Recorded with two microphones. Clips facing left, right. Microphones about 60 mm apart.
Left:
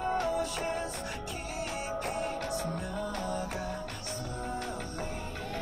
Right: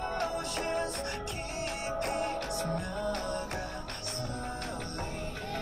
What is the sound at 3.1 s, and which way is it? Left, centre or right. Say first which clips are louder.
Music: right 2 dB; right.